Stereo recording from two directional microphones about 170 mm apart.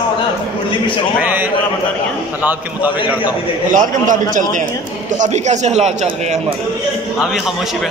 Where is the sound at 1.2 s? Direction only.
10° right (ahead or behind).